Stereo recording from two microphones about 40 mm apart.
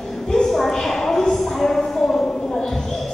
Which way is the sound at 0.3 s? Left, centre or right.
Centre.